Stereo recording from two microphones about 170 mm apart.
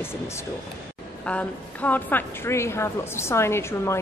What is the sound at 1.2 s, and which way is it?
A woman's voice, 10° left (ahead or behind).